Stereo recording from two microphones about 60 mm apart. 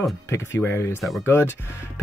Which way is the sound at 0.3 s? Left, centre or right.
Left.